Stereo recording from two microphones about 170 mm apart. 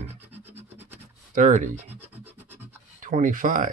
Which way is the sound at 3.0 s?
50° right (ahead or behind).